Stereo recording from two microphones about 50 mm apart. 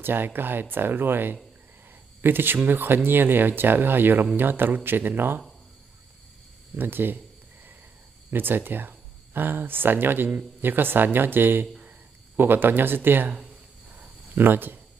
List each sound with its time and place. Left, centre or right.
0.0 s speech: right
6.8 s speech: right
8.3 s speech: right
14.3 s speech: right